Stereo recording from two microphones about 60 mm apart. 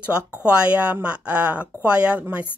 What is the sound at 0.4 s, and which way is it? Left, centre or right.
Speech, centre.